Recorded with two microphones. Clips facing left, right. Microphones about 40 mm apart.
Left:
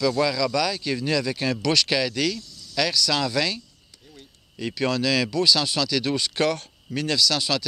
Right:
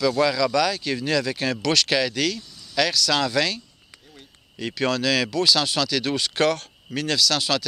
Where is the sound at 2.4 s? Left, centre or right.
Centre.